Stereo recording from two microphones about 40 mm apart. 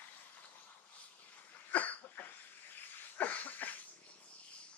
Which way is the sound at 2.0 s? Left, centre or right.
Left.